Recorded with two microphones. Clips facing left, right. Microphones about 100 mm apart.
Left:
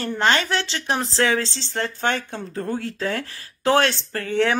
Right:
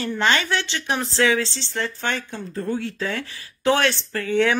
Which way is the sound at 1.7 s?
50° left (ahead or behind).